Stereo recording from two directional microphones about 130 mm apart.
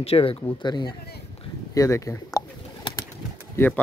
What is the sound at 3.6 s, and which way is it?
Speech, 20° left (ahead or behind).